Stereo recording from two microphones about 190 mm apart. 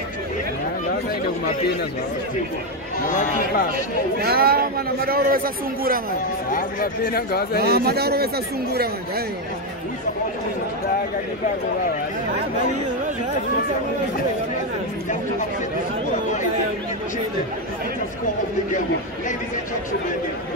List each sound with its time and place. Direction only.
3.1 s speech: 40° left (ahead or behind)
3.7 s a man's voice: 55° right (ahead or behind)
6.5 s speech: 50° left (ahead or behind)
7.6 s speech: 55° right (ahead or behind)